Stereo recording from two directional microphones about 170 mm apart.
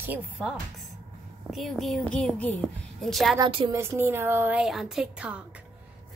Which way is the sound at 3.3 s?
30° right (ahead or behind).